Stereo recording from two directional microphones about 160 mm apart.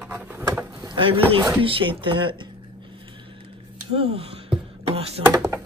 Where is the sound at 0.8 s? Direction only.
35° right (ahead or behind).